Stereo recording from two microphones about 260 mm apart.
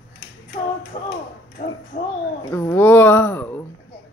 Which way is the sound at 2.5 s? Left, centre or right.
Centre.